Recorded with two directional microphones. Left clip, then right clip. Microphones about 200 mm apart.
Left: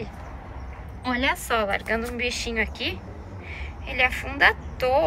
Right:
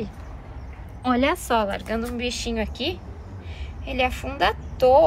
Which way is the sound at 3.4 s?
10° right (ahead or behind).